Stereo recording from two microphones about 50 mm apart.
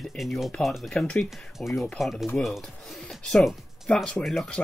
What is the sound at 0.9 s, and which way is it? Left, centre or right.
Speech, centre.